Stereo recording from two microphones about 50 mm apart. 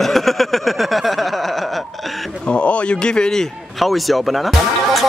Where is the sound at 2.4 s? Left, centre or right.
Left.